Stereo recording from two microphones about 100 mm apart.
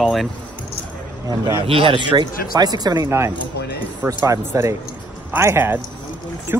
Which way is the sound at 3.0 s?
25° right (ahead or behind).